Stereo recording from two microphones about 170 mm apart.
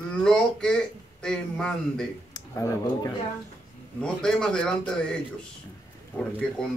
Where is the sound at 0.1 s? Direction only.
5° left (ahead or behind).